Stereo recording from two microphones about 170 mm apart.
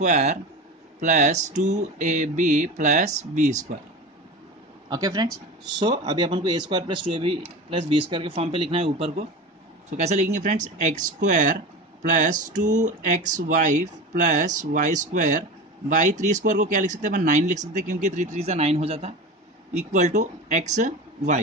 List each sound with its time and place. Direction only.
0.0 s speech: 45° right (ahead or behind)
4.8 s speech: 20° right (ahead or behind)
19.8 s speech: 45° right (ahead or behind)